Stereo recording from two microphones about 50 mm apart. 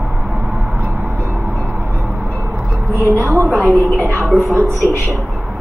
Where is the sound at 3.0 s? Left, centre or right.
Right.